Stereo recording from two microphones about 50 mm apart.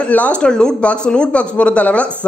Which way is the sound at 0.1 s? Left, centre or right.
Left.